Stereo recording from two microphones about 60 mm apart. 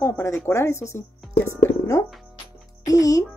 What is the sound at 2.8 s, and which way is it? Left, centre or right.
Speech, left.